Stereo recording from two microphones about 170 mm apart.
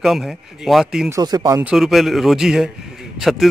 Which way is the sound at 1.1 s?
25° right (ahead or behind).